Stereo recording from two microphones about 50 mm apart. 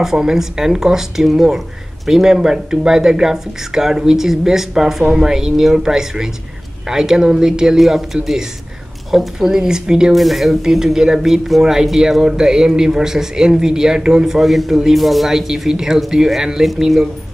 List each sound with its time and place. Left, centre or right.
0.0 s speech: centre
10.1 s speech: centre